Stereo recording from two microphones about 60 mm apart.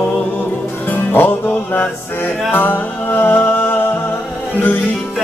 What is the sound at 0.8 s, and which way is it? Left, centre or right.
Music, left.